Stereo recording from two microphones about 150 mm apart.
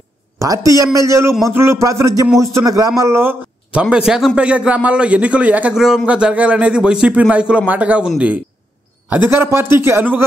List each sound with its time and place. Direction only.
0.4 s a man's voice: 20° right (ahead or behind)
3.8 s a man's voice: 5° right (ahead or behind)
9.1 s a man's voice: 15° right (ahead or behind)